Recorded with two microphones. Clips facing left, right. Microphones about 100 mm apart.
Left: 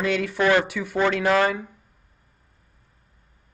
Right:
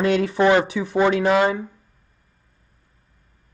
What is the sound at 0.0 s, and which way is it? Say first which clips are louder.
Speech: right 4 dB; 35° right (ahead or behind).